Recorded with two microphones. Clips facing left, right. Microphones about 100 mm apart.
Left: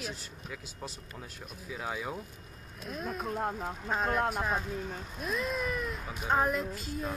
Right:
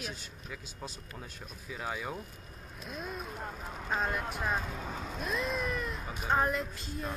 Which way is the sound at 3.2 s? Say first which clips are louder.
Left 7 dB; 90° left.